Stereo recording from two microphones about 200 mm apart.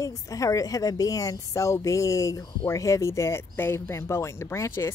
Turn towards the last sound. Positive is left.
turn(degrees=15)  # may be behind; listen again after turning